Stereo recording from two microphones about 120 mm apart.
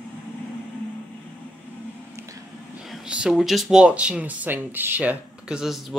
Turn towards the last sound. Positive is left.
turn(degrees=0)  # may be behind; listen again after turning